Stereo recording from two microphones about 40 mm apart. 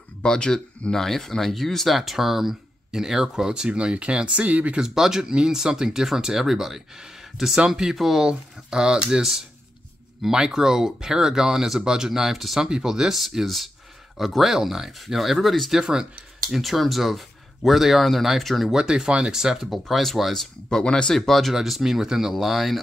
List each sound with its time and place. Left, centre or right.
0.2 s speech: centre
0.9 s speech: centre; by 4.7 s right
4.7 s speech: centre
8.3 s speech: right
10.3 s speech: centre
12.5 s speech: centre
15.7 s speech: centre
16.4 s speech: centre
18.7 s speech: centre
19.6 s speech: centre
20.7 s speech: left
21.1 s speech: centre
21.5 s speech: centre